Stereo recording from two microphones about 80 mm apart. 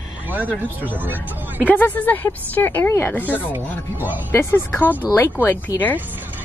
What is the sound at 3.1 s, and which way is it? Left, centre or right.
Speech, left.